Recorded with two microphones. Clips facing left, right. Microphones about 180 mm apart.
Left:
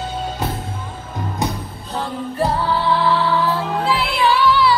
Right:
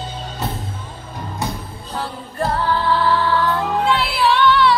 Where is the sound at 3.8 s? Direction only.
Centre (ahead or behind).